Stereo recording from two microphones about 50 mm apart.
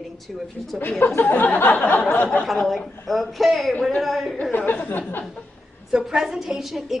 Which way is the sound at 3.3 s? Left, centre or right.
Centre.